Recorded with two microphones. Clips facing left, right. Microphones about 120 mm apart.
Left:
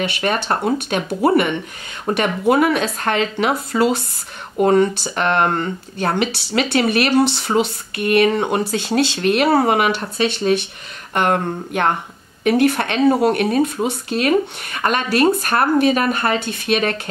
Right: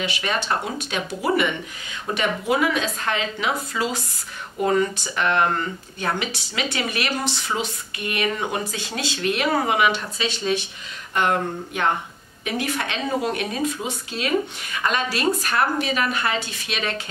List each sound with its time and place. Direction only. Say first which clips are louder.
0.0 s speech: left 5 dB; 55° left (ahead or behind)
4.6 s speech: left 6 dB; 30° left (ahead or behind)
5.1 s speech: left 1 dB; 55° left (ahead or behind)
6.1 s speech: left 9 dB; 65° left (ahead or behind)